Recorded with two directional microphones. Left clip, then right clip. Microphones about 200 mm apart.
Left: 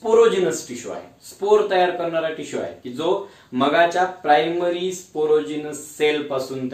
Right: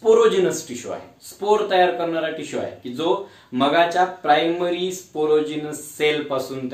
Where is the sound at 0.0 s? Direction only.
10° right (ahead or behind).